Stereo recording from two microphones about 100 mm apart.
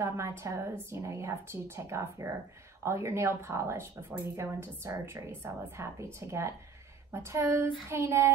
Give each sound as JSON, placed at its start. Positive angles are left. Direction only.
{"t": 0.0, "sound": "speech", "side_deg": -30}